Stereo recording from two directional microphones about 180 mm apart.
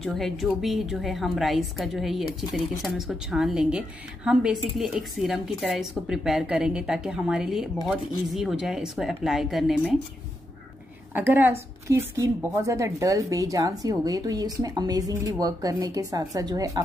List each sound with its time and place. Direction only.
0.0 s a woman's voice: centre (ahead or behind)
11.1 s a woman's voice: 10° right (ahead or behind)